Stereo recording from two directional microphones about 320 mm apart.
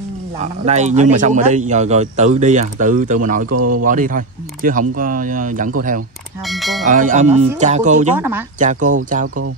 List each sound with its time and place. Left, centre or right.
0.4 s speech: right
6.4 s speech: centre
6.9 s speech: right
8.2 s speech: centre
8.5 s speech: right